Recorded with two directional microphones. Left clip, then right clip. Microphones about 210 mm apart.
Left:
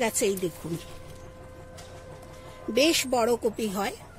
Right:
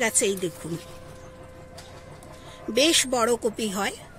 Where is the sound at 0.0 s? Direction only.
5° left (ahead or behind).